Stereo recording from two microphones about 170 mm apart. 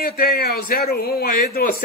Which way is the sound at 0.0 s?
60° left (ahead or behind).